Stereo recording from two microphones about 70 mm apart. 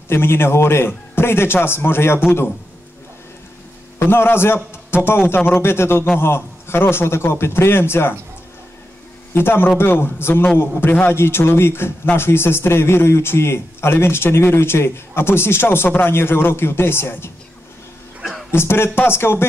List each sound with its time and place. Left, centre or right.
0.1 s speech: left
4.0 s speech: left
9.3 s speech: left
18.5 s speech: left